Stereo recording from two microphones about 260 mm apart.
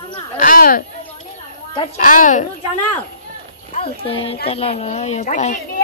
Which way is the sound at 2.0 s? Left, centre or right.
Left.